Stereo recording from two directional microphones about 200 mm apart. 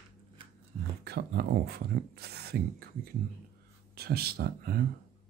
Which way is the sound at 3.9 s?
50° right (ahead or behind).